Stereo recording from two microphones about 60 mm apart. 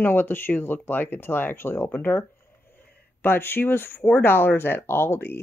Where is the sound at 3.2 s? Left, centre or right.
Left.